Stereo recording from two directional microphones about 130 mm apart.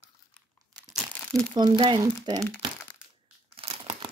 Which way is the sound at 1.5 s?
35° right (ahead or behind).